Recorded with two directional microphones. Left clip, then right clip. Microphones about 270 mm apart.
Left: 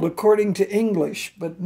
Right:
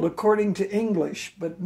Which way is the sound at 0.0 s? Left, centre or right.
Left.